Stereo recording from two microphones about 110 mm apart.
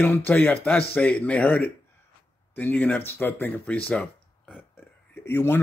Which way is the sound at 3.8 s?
10° left (ahead or behind).